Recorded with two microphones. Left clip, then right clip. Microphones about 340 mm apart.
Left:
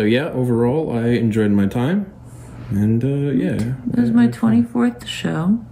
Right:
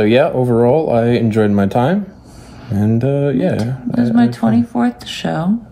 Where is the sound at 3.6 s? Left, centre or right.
Centre.